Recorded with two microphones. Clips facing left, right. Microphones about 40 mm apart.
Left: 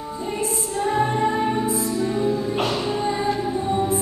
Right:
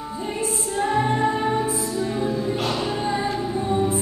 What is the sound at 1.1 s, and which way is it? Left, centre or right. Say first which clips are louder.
Music: even; centre.